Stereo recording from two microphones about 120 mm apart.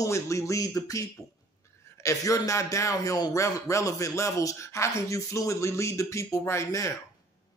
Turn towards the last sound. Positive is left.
turn(degrees=25)  # may be behind; listen again after turning